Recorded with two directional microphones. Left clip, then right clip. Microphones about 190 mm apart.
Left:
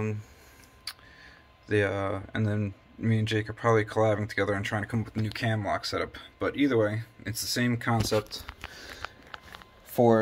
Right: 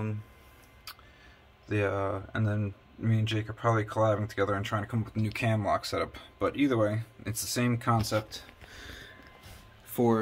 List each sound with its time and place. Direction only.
0.9 s a sound: 10° left (ahead or behind)
1.7 s speech: 10° left (ahead or behind)
5.2 s speech: 10° right (ahead or behind)
9.9 s speech: 20° left (ahead or behind)